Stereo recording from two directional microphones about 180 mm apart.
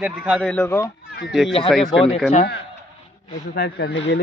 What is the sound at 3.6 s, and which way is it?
Speech, 60° left (ahead or behind).